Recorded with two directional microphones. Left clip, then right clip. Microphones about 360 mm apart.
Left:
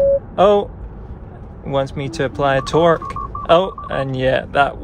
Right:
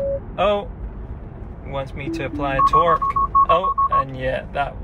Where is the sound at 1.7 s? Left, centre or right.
Left.